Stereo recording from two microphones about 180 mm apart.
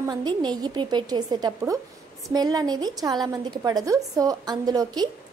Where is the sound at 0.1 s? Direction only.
25° right (ahead or behind).